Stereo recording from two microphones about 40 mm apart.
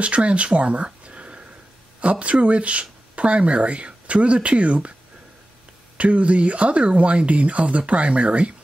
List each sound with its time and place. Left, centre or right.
0.0 s speech: right
5.9 s speech: right